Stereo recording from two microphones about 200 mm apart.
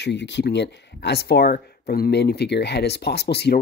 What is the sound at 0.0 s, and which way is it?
Speech, 60° left (ahead or behind).